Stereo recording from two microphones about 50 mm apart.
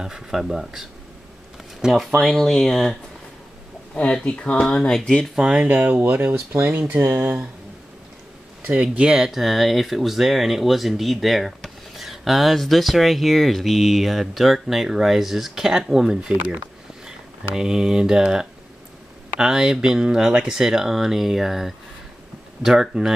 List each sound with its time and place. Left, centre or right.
0.0 s speech: centre
1.9 s speech: centre
3.9 s speech: left
5.4 s speech: right
5.7 s speech: right
8.6 s speech: right
9.0 s speech: centre
17.6 s speech: centre